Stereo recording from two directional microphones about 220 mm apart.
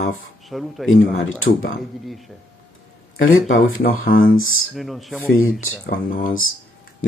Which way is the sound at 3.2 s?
65° left (ahead or behind).